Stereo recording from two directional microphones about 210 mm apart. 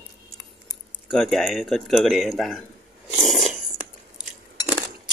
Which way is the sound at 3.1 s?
Centre (ahead or behind).